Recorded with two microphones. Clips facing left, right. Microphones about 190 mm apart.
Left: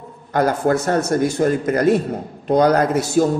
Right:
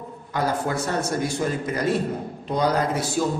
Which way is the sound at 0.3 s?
50° left (ahead or behind).